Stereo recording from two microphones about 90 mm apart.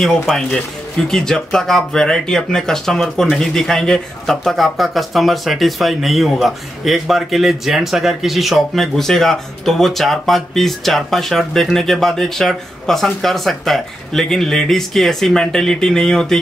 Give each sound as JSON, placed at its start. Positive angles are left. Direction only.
{"t": 0.0, "sound": "speech", "side_deg": 5}